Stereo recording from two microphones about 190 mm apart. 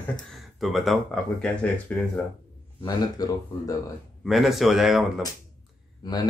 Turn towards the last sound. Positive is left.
turn(degrees=20)  # may be behind; listen again after turning